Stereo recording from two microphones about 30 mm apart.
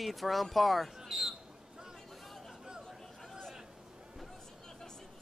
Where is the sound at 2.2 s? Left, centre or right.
Centre.